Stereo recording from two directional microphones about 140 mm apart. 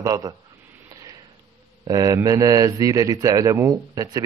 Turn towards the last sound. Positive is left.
turn(degrees=-25)  # may be behind; listen again after turning